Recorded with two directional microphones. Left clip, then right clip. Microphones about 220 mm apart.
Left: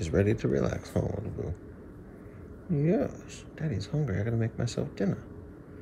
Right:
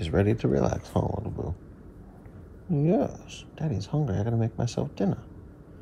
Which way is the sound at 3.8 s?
50° right (ahead or behind).